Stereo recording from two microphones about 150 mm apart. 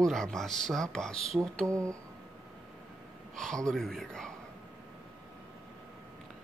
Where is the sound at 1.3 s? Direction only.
15° right (ahead or behind).